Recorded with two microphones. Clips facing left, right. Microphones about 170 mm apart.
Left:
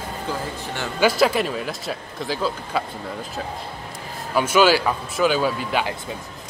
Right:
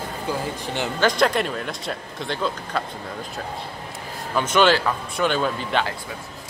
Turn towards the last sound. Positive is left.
turn(degrees=5)  # may be behind; listen again after turning